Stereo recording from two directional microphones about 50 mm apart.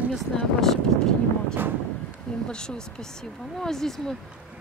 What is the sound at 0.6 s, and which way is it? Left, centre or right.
Speech, centre.